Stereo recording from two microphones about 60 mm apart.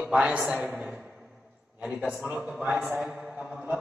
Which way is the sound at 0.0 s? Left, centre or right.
Right.